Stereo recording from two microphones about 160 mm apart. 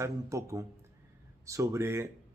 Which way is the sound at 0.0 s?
20° right (ahead or behind).